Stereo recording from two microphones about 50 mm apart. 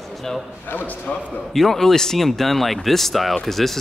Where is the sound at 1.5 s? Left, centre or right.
Centre.